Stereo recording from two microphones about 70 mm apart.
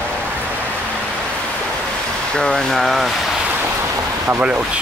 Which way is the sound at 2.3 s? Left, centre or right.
Centre.